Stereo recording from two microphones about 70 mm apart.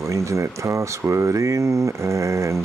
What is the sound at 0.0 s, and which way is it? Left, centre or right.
Speech, right.